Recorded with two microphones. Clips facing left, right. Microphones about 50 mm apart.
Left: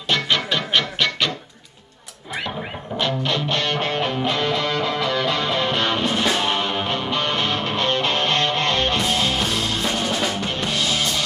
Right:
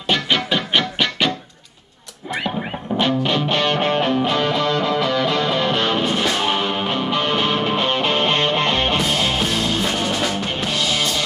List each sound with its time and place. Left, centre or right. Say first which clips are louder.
0.1 s music: right 2 dB; centre
3.0 s music: right 3 dB; centre
4.0 s music: right 3 dB; centre